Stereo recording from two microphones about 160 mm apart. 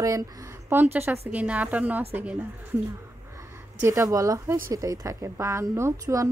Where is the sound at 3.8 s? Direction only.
20° right (ahead or behind).